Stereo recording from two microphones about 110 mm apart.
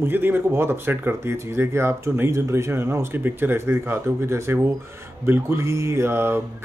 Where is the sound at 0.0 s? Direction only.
20° right (ahead or behind).